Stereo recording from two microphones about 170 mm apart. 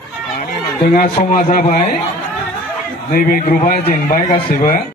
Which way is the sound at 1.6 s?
45° left (ahead or behind).